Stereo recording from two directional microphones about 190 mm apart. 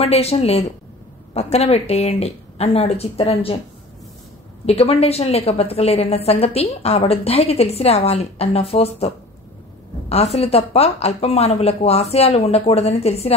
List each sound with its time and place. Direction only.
0.0 s a woman's voice: 30° left (ahead or behind)
4.6 s a woman's voice: 30° left (ahead or behind)